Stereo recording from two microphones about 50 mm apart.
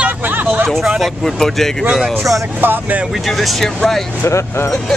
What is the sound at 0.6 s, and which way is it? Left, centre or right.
Speech, centre.